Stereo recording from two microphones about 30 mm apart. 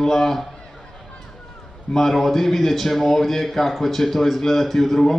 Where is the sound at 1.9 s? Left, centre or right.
Centre.